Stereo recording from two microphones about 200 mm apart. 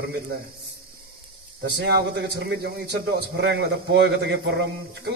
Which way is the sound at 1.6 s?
55° right (ahead or behind).